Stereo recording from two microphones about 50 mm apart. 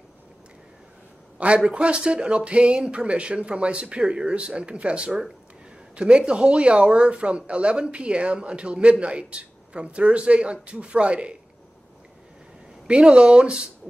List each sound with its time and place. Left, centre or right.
1.7 s a man's voice: right
12.8 s a man's voice: centre